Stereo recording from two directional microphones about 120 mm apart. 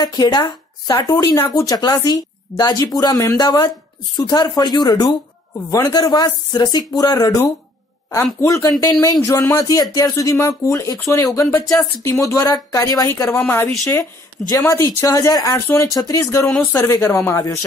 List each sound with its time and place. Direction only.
0.0 s speech: 35° left (ahead or behind)
14.5 s speech: 25° left (ahead or behind)